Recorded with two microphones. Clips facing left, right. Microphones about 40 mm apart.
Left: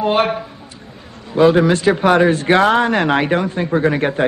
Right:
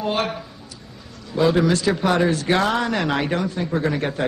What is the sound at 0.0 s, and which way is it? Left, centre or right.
A man's voice, left.